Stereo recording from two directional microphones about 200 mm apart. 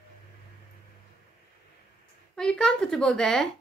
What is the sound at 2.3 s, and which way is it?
A woman's voice, 5° left (ahead or behind).